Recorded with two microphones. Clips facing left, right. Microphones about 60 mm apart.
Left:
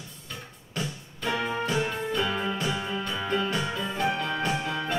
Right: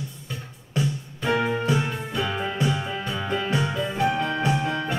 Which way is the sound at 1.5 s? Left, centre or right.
Centre.